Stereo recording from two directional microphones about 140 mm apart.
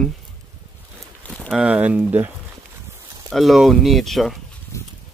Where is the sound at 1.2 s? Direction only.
10° left (ahead or behind).